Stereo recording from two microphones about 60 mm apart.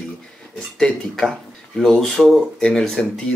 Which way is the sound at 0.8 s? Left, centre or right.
Centre.